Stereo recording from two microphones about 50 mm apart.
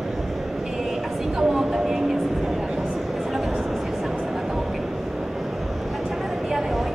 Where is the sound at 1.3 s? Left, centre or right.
Centre.